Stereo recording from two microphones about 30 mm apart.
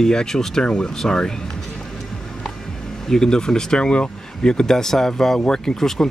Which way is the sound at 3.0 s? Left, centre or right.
Centre.